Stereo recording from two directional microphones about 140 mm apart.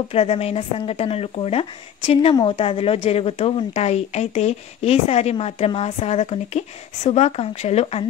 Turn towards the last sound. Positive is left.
turn(degrees=50)  # may be behind; listen again after turning